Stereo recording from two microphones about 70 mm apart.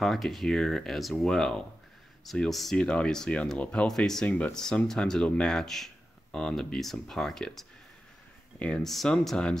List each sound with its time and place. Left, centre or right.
0.0 s speech: centre
4.3 s speech: centre
4.6 s speech: centre
8.5 s speech: centre
8.8 s speech: centre